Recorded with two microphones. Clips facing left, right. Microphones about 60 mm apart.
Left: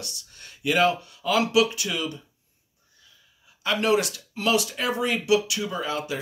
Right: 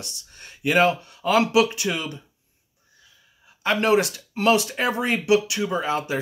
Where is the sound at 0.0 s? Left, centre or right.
Right.